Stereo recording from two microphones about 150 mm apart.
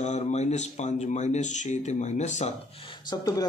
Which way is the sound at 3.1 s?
25° left (ahead or behind).